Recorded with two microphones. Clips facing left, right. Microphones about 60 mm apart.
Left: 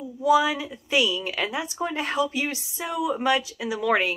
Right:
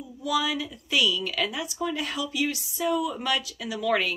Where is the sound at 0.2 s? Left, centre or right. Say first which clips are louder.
Left 7 dB; left.